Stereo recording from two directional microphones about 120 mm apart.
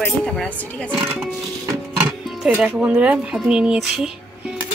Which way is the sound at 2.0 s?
10° right (ahead or behind).